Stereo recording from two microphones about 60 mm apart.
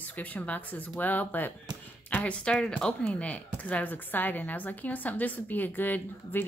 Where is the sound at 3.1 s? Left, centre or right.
Left.